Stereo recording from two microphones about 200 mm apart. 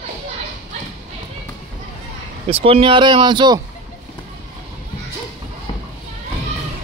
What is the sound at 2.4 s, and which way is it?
Speech, 30° right (ahead or behind).